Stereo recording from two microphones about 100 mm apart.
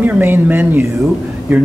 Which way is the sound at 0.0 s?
20° right (ahead or behind).